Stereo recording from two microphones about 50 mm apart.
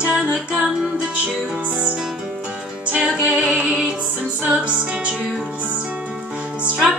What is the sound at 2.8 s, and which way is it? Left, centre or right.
Music, right.